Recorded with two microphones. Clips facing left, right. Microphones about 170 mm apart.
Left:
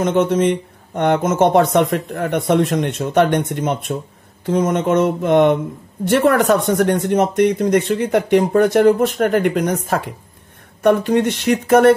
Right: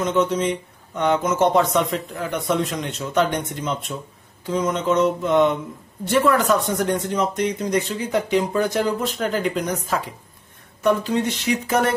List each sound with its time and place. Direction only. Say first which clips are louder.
0.0 s speech: left 5 dB; 55° left (ahead or behind)